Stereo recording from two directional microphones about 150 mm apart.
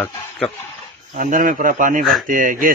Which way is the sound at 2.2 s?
60° right (ahead or behind).